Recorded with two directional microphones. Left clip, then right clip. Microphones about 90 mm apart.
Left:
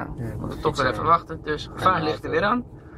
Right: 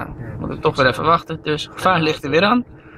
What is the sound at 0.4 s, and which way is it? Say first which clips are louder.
Speech: right 7 dB; 10° right (ahead or behind).